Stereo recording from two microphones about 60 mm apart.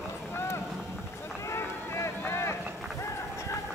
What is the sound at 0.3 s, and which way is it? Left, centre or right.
Vehicle, left.